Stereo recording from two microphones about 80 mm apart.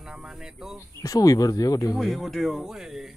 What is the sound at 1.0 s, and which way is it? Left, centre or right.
Speech, left.